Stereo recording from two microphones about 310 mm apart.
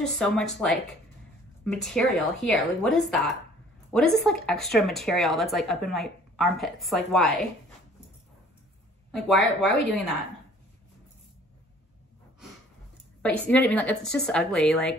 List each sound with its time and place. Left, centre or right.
0.2 s speech: centre
9.1 s speech: centre
13.2 s speech: centre